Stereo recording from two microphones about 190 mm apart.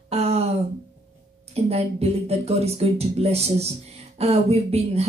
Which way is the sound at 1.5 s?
35° right (ahead or behind).